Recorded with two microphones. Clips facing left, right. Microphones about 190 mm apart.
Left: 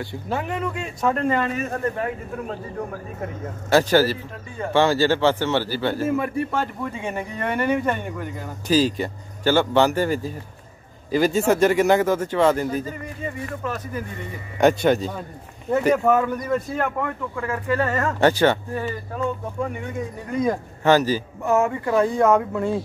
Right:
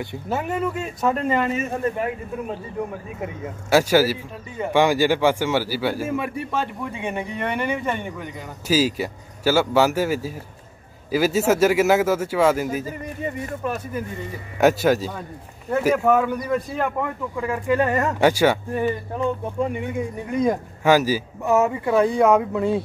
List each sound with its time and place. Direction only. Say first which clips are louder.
0.3 s speech: right 2 dB; 5° right (ahead or behind)
3.7 s speech: even; 10° right (ahead or behind)
14.6 s speech: even; 5° right (ahead or behind)
16.8 s speech: right 1 dB; 15° right (ahead or behind)
21.5 s speech: right 1 dB; 20° right (ahead or behind)